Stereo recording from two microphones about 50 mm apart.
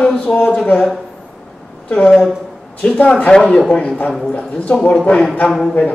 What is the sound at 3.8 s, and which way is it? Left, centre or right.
Speech, left.